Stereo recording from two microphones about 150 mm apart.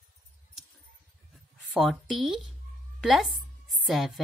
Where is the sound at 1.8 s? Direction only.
Centre (ahead or behind).